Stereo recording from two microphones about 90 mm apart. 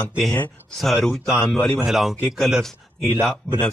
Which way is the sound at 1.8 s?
5° right (ahead or behind).